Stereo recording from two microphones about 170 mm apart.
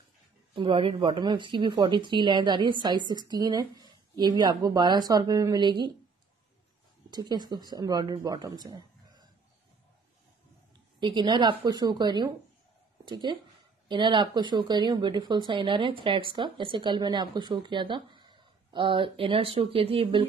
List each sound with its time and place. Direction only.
0.6 s speech: 30° right (ahead or behind)
7.1 s speech: 25° right (ahead or behind)
11.0 s speech: 25° right (ahead or behind)